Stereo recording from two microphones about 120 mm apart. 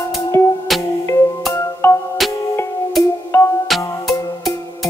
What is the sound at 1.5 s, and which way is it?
Music, 20° left (ahead or behind).